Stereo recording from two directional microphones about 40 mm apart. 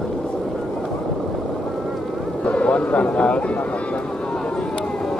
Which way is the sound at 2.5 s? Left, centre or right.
Left.